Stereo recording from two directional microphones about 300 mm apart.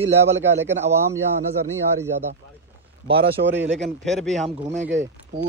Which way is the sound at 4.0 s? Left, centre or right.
Centre.